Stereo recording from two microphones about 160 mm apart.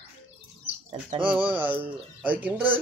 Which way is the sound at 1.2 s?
10° right (ahead or behind).